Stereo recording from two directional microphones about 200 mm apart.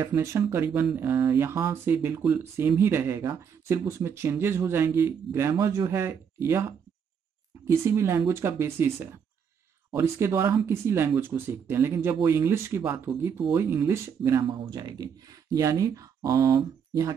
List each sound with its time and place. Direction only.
0.0 s speech: 15° right (ahead or behind)